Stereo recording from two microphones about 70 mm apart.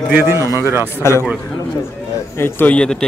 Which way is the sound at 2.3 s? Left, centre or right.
Left.